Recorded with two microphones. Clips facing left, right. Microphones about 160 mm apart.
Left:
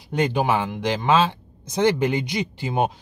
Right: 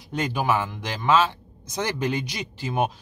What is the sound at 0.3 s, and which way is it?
Speech, 20° left (ahead or behind).